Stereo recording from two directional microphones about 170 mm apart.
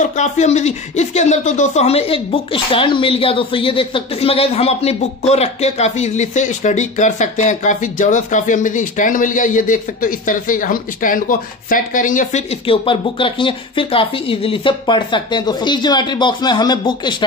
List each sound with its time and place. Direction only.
0.0 s speech: 45° left (ahead or behind); by 17.1 s 25° left (ahead or behind)